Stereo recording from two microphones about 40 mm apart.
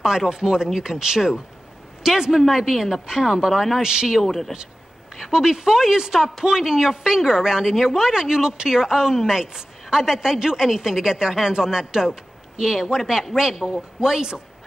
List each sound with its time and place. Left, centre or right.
0.3 s speech: centre
3.8 s a man's voice: centre
4.2 s speech: centre
5.1 s speech: centre